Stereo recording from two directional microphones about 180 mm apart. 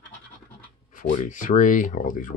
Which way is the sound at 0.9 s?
50° left (ahead or behind).